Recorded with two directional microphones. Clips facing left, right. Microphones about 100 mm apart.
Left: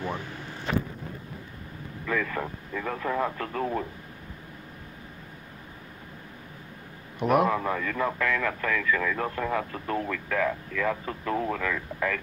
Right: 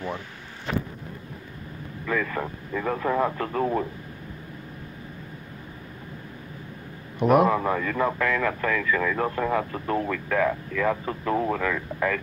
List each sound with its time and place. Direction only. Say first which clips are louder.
2.0 s vehicle: right 2 dB; 30° right (ahead or behind)
2.7 s a man's voice: right 5 dB; 30° right (ahead or behind)
7.2 s a man's voice: right 4 dB; 30° right (ahead or behind)